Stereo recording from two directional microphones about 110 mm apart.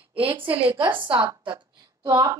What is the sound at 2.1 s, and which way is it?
Speech, 35° right (ahead or behind).